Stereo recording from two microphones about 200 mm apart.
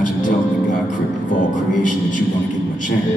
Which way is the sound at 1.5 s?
40° left (ahead or behind).